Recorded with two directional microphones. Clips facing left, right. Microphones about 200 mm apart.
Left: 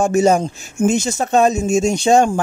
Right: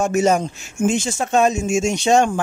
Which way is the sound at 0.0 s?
30° left (ahead or behind).